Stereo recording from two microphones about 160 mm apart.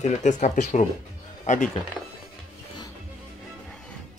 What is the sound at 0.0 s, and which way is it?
Speech, 50° left (ahead or behind).